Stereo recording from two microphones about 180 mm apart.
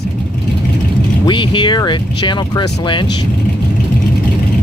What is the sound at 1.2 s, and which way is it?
Speech, 25° left (ahead or behind).